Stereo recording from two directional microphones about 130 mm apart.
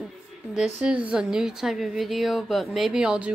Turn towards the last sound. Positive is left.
turn(degrees=-5)  # may be behind; listen again after turning